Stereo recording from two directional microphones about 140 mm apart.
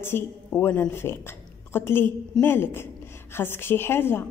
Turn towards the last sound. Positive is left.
turn(degrees=15)  # may be behind; listen again after turning